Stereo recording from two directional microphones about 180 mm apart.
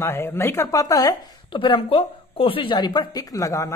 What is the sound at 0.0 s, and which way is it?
Speech, 15° left (ahead or behind).